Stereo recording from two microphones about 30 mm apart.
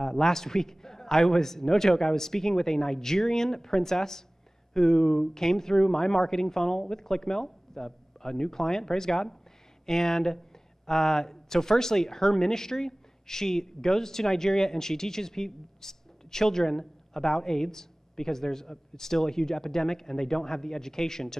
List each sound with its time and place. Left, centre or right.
0.0 s speech: centre